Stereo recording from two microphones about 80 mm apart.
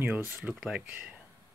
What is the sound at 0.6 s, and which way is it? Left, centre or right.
Speech, centre.